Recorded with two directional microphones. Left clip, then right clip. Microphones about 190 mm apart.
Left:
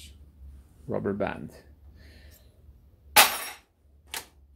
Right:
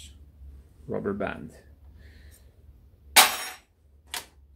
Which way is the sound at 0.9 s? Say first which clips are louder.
Left 1 dB; 30° left (ahead or behind).